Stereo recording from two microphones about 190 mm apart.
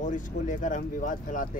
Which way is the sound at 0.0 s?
40° left (ahead or behind).